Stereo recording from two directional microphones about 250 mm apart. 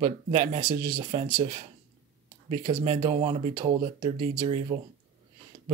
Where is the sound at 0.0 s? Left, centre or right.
Right.